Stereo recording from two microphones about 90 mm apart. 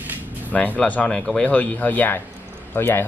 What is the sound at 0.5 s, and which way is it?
Speech, 10° left (ahead or behind).